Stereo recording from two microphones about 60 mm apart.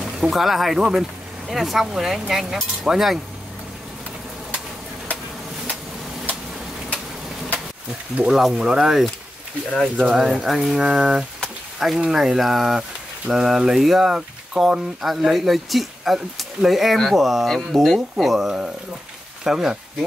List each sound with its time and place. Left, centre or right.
0.0 s speech: centre
8.2 s speech: centre
10.0 s speech: centre